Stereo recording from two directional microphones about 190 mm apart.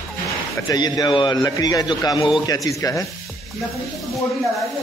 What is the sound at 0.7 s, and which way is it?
A man's voice, 20° left (ahead or behind).